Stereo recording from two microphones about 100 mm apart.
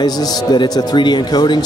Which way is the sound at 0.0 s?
45° left (ahead or behind).